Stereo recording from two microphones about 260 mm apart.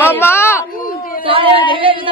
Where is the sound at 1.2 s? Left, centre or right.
Centre.